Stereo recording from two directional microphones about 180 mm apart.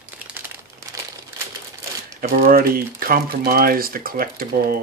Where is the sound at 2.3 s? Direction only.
55° right (ahead or behind).